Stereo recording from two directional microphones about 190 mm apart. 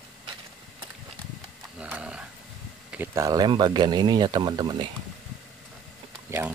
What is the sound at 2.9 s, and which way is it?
Speech, 15° right (ahead or behind).